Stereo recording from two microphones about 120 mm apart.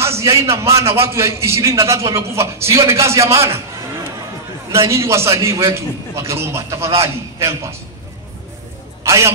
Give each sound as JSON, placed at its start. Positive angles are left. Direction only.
{"t": 0.0, "sound": "a man's voice", "side_deg": -25}
{"t": 4.7, "sound": "a man's voice", "side_deg": -25}
{"t": 9.0, "sound": "speech", "side_deg": -25}